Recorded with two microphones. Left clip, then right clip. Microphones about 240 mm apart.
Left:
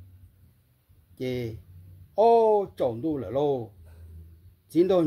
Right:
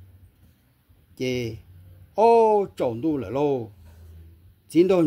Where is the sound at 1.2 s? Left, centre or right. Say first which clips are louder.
Right 4 dB; right.